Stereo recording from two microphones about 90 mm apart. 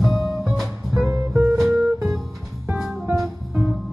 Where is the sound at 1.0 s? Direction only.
40° right (ahead or behind).